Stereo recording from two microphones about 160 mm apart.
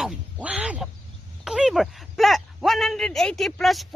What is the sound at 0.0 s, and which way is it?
Quack, 5° right (ahead or behind).